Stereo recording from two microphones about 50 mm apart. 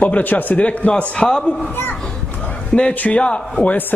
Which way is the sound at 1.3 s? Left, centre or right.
Centre.